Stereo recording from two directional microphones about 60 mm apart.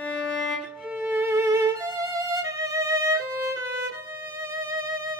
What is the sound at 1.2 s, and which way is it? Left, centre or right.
Music, right.